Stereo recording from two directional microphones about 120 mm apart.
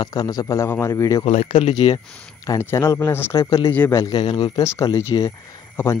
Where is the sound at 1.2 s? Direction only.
70° left (ahead or behind).